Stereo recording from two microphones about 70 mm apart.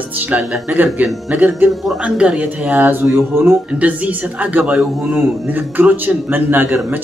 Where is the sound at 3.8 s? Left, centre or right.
Right.